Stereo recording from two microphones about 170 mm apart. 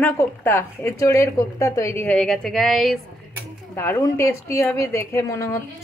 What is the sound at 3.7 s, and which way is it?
A woman's voice, 15° left (ahead or behind).